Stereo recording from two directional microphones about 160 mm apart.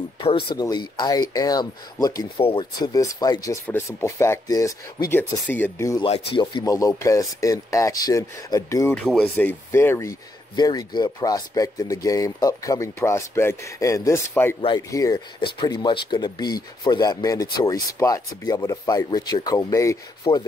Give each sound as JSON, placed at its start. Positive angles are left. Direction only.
{"t": 0.5, "sound": "speech", "side_deg": 25}
{"t": 2.9, "sound": "speech", "side_deg": 20}
{"t": 6.0, "sound": "speech", "side_deg": 35}
{"t": 6.4, "sound": "speech", "side_deg": 20}
{"t": 8.9, "sound": "speech", "side_deg": 5}
{"t": 20.2, "sound": "speech", "side_deg": 35}